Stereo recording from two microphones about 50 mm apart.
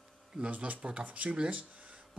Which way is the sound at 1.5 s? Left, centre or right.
Right.